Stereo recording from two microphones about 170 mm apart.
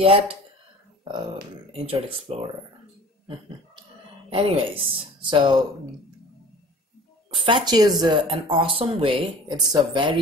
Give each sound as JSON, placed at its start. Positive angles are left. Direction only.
{"t": 0.0, "sound": "speech", "side_deg": -35}
{"t": 1.7, "sound": "speech", "side_deg": -35}
{"t": 3.3, "sound": "a sound", "side_deg": -30}
{"t": 4.3, "sound": "speech", "side_deg": -30}
{"t": 7.3, "sound": "speech", "side_deg": -30}